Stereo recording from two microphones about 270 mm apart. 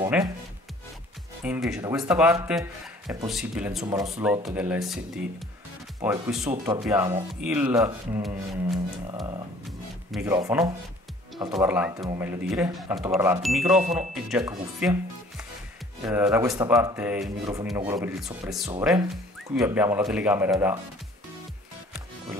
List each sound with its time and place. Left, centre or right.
0.0 s speech: centre
1.4 s speech: centre
9.7 s music: centre
10.3 s speech: centre
16.0 s speech: centre